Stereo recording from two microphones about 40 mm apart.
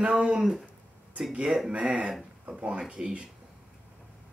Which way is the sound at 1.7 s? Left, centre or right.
Right.